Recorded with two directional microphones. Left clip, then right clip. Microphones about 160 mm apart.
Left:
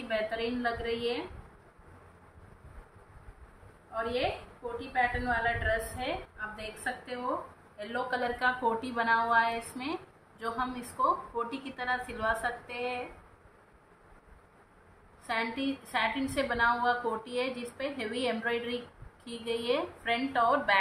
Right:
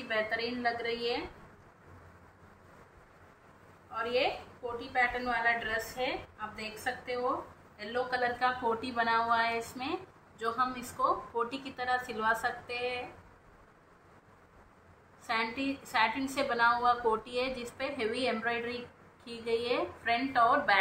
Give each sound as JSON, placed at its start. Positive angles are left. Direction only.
{"t": 0.1, "sound": "a woman's voice", "side_deg": 20}
{"t": 3.9, "sound": "a woman's voice", "side_deg": 20}
{"t": 15.2, "sound": "a woman's voice", "side_deg": 10}